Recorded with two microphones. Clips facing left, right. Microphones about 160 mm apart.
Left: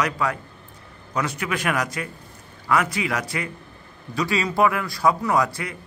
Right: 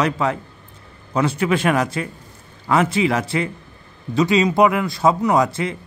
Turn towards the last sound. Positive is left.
turn(degrees=-25)  # may be behind; listen again after turning